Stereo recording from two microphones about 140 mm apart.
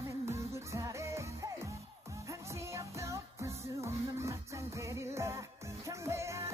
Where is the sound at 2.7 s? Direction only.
20° right (ahead or behind).